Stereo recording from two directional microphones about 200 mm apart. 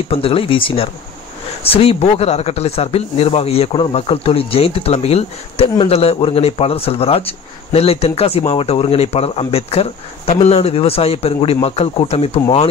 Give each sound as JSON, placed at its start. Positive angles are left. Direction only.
{"t": 0.1, "sound": "speech", "side_deg": 30}